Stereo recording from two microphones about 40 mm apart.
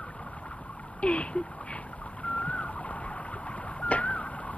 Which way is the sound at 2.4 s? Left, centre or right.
Left.